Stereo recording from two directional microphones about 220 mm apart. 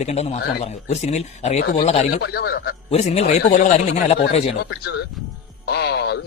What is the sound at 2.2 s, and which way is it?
Speech, 45° left (ahead or behind).